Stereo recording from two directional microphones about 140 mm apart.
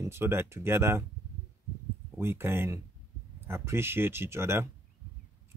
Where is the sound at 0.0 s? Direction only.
15° right (ahead or behind).